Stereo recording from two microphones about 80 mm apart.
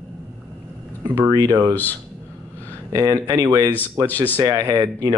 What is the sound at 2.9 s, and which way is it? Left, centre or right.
Speech, right.